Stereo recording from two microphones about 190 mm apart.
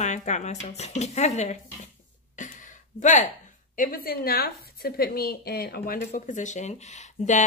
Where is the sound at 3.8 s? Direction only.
50° left (ahead or behind).